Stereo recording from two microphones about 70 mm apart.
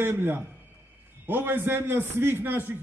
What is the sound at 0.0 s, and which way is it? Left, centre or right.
A man's voice, right.